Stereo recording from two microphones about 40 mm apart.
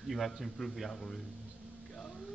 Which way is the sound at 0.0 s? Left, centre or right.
Centre.